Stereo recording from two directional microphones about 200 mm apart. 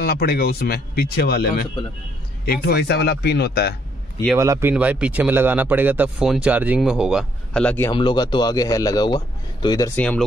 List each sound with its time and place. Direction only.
0.0 s speech: 50° left (ahead or behind)
2.6 s speech: 55° left (ahead or behind)
4.4 s speech: 15° right (ahead or behind); by 7.9 s 10° left (ahead or behind)
7.9 s a man's voice: 25° left (ahead or behind); by 10.2 s 5° left (ahead or behind)